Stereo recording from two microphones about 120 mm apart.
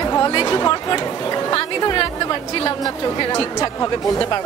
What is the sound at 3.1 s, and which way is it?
Speech, 40° left (ahead or behind).